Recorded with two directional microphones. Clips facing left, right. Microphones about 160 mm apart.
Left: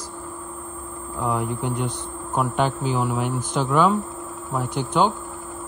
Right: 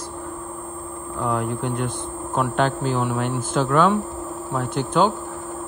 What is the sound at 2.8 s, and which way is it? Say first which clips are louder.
Speech: right 1 dB; 65° right (ahead or behind).